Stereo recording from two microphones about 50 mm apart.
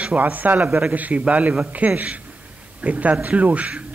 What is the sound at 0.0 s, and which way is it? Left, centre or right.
A man's voice, right.